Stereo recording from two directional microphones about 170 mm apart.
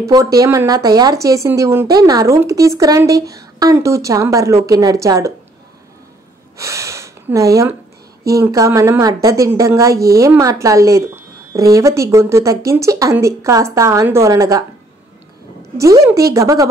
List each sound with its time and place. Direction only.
0.0 s speech: 20° right (ahead or behind)
6.6 s a sound: 15° right (ahead or behind)
8.4 s speech: 15° right (ahead or behind)
15.8 s speech: 15° right (ahead or behind)